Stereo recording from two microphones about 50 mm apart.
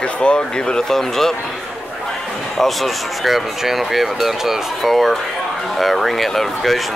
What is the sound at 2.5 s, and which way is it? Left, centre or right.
Speech, centre.